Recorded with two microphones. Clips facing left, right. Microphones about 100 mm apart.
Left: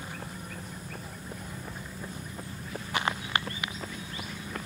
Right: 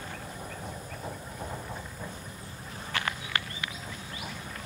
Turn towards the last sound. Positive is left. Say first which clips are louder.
# left 2 dB
turn(degrees=20)  # may be behind; listen again after turning